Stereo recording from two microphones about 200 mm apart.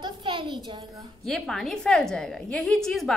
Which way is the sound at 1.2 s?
Centre (ahead or behind).